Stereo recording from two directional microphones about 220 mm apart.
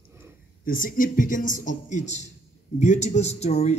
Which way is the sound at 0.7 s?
40° left (ahead or behind).